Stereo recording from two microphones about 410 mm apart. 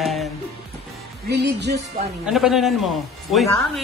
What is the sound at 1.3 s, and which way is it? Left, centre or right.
Speech, right.